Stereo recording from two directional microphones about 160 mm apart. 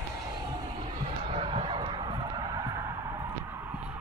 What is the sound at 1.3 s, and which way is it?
Music, 30° right (ahead or behind).